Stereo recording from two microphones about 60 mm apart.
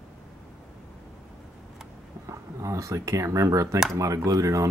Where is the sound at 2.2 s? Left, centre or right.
Right.